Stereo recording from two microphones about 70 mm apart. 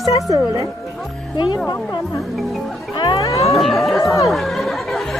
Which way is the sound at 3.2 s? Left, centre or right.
Left.